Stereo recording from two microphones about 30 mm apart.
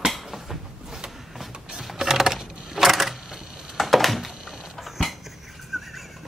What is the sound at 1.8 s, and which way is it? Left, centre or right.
Coin, centre.